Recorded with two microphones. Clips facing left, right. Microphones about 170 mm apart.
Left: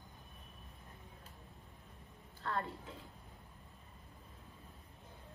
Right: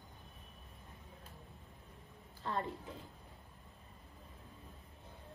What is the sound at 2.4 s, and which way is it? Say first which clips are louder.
Speech: right 1 dB; 20° right (ahead or behind).